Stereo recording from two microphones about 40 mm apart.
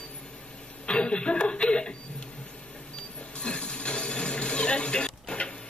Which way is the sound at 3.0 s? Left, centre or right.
Left.